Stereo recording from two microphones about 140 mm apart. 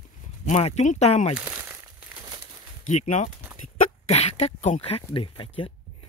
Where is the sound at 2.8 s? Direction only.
55° left (ahead or behind).